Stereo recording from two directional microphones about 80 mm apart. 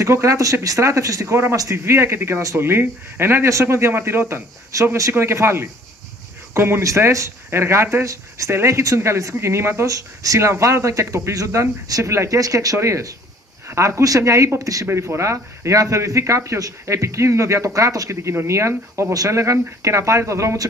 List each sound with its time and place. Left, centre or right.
0.0 s speech: right
4.7 s speech: right